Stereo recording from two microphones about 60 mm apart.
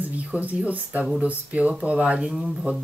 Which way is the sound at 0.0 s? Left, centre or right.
Right.